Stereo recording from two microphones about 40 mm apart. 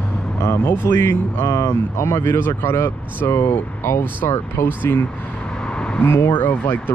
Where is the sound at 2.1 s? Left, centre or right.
Left.